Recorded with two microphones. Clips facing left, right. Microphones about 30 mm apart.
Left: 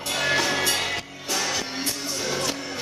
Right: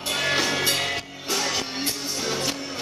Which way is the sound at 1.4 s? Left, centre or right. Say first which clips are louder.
Right 1 dB; centre.